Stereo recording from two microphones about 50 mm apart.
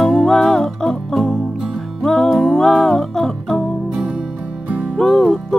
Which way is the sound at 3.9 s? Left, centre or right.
Centre.